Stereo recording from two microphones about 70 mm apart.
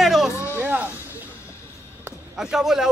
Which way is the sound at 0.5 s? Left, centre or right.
Right.